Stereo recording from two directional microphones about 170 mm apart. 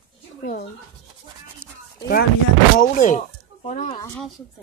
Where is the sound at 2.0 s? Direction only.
65° left (ahead or behind).